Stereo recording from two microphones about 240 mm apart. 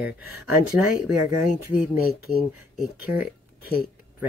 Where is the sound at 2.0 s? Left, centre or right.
Left.